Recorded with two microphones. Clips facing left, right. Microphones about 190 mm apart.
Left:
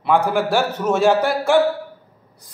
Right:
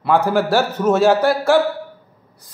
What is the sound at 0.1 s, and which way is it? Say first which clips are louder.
Speech: right 2 dB; 15° left (ahead or behind).